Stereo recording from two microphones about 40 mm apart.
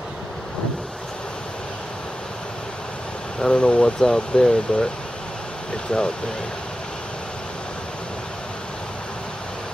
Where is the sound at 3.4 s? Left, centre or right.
Left.